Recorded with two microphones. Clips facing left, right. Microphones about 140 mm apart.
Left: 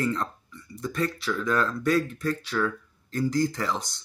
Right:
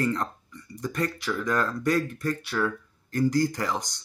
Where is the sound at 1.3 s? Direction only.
20° right (ahead or behind).